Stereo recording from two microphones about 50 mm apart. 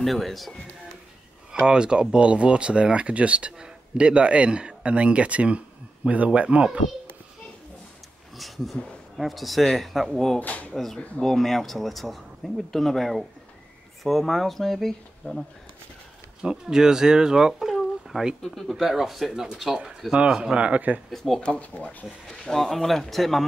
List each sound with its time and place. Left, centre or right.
0.0 s speech: centre
1.5 s speech: centre
8.4 s speech: centre
10.4 s speech: left
10.7 s speech: centre
16.4 s speech: centre; by 21.0 s right
21.1 s speech: centre
21.4 s speech: centre
22.4 s speech: centre